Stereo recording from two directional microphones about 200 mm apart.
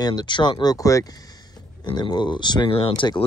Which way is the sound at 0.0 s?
20° left (ahead or behind).